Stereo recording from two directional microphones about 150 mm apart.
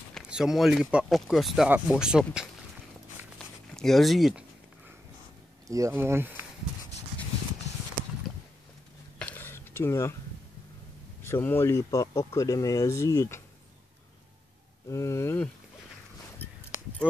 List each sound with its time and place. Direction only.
0.1 s speech: 5° right (ahead or behind)
3.3 s a sound: 5° left (ahead or behind)
5.7 s speech: 20° right (ahead or behind)
9.2 s a sound: 15° left (ahead or behind)
11.2 s speech: 15° left (ahead or behind)
14.9 s speech: 20° left (ahead or behind)